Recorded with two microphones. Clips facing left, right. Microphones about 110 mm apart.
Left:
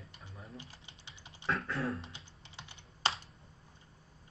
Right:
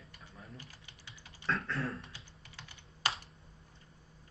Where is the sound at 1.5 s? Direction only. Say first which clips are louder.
Left 1 dB; centre (ahead or behind).